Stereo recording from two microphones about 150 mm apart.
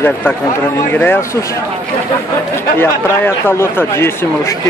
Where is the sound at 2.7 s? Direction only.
15° left (ahead or behind).